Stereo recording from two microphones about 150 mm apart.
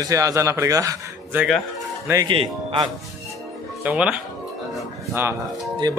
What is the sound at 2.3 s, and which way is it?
Speech, 35° right (ahead or behind).